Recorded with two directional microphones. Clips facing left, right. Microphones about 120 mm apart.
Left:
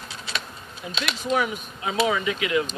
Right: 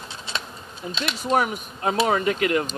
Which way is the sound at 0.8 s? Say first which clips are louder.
Right 1 dB; 40° right (ahead or behind).